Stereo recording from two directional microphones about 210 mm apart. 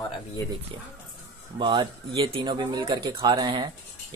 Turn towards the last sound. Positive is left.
turn(degrees=-20)  # may be behind; listen again after turning